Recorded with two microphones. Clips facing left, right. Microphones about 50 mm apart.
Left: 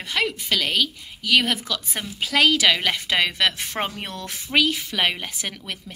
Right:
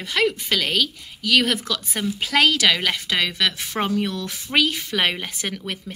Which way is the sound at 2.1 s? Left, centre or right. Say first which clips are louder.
Right 1 dB; centre.